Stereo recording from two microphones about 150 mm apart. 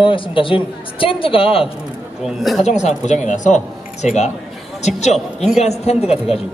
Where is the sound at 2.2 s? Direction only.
Centre (ahead or behind).